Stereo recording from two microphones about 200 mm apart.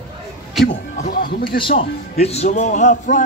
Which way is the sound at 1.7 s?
30° left (ahead or behind).